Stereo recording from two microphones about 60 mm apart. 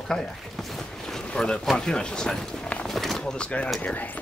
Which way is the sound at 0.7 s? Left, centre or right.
Centre.